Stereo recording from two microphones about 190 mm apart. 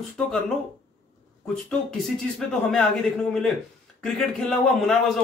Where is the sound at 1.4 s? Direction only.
5° left (ahead or behind).